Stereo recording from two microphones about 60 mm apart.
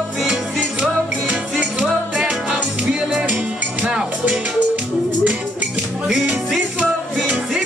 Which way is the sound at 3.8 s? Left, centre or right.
Centre.